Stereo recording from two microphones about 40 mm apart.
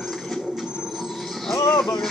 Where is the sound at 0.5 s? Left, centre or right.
Centre.